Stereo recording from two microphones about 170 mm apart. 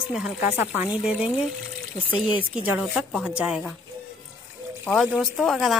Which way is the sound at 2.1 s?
30° left (ahead or behind).